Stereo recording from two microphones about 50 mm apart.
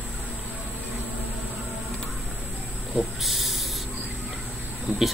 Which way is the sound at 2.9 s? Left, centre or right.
Centre.